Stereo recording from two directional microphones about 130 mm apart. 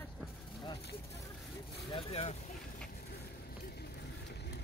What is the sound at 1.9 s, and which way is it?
Vehicle, 45° left (ahead or behind).